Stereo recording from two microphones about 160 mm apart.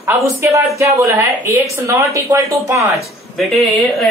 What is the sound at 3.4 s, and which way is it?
Speech, centre (ahead or behind).